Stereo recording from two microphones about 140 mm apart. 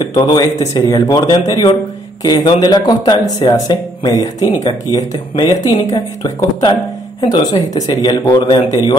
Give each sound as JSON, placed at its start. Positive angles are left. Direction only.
{"t": 0.0, "sound": "speech", "side_deg": 30}